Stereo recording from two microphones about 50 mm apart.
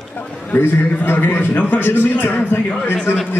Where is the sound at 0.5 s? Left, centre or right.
Left.